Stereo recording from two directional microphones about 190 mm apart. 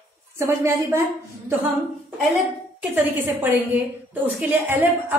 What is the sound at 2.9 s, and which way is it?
A woman's voice, 10° right (ahead or behind).